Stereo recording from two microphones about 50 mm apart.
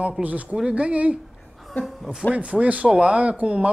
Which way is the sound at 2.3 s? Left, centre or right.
Right.